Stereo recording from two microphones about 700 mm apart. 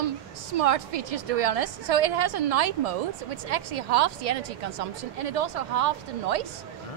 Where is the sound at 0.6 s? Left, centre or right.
Right.